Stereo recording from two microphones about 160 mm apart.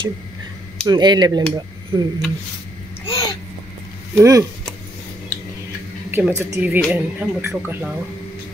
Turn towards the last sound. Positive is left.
turn(degrees=-10)  # may be behind; listen again after turning